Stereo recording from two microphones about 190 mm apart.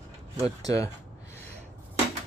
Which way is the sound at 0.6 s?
20° left (ahead or behind).